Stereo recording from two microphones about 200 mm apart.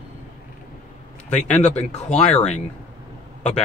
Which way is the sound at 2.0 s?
35° left (ahead or behind).